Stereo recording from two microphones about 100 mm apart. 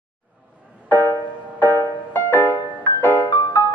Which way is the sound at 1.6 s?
20° left (ahead or behind).